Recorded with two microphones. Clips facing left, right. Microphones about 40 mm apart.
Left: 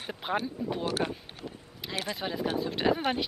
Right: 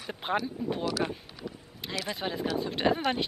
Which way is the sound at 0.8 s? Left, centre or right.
Left.